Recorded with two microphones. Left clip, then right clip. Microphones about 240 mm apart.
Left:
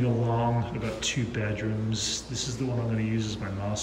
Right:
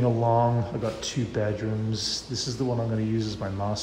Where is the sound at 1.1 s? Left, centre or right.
Centre.